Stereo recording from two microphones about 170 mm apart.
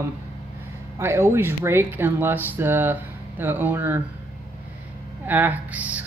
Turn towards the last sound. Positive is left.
turn(degrees=-10)  # may be behind; listen again after turning